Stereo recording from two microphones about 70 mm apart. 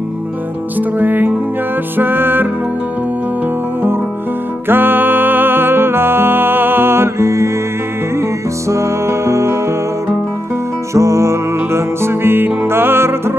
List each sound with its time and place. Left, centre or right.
0.7 s music: right
4.6 s music: right
10.9 s music: right